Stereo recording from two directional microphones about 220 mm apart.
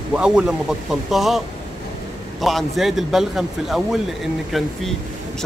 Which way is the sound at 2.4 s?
Centre (ahead or behind).